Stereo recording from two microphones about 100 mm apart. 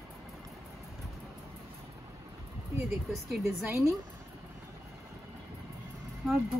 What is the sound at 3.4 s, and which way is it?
Speech, 25° right (ahead or behind).